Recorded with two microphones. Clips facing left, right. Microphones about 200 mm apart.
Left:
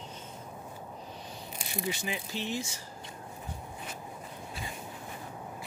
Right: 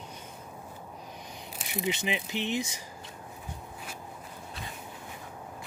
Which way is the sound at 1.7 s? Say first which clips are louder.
Right 4 dB; 20° right (ahead or behind).